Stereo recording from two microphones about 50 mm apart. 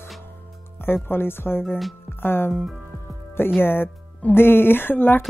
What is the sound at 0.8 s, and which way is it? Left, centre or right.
Speech, left.